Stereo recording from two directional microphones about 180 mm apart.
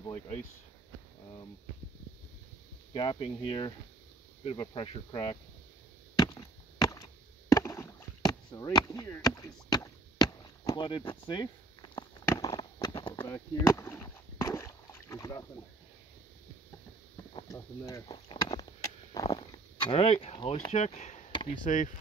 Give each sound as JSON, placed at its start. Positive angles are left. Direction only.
{"t": 2.9, "sound": "speech", "side_deg": 25}
{"t": 6.1, "sound": "chop", "side_deg": 20}
{"t": 7.5, "sound": "rowboat", "side_deg": 15}
{"t": 17.5, "sound": "speech", "side_deg": 15}
{"t": 18.1, "sound": "a sound", "side_deg": 25}
{"t": 20.4, "sound": "speech", "side_deg": 35}
{"t": 21.3, "sound": "chop", "side_deg": 25}
{"t": 21.6, "sound": "speech", "side_deg": 45}